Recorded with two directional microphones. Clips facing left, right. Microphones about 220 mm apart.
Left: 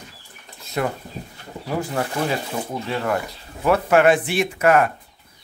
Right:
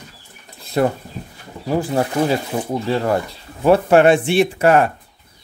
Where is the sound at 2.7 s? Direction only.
35° right (ahead or behind).